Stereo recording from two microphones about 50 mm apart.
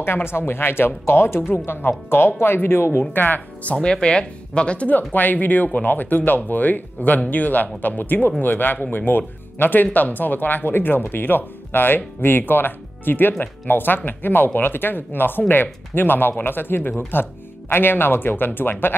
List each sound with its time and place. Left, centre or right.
0.0 s speech: left
3.7 s speech: centre; by 18.9 s left